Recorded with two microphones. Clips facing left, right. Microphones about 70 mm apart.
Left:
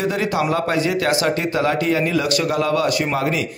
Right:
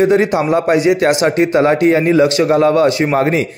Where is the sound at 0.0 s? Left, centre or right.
Right.